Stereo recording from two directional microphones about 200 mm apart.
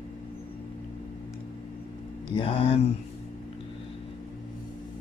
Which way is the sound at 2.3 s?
25° left (ahead or behind).